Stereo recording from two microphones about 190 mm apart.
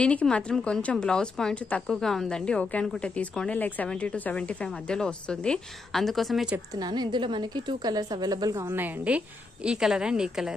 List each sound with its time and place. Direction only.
0.0 s a woman's voice: 5° left (ahead or behind)
6.8 s a woman's voice: 20° right (ahead or behind); by 10.5 s 5° right (ahead or behind)